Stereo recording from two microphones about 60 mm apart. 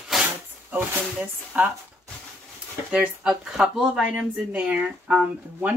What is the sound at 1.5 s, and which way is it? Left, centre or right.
Speech, right.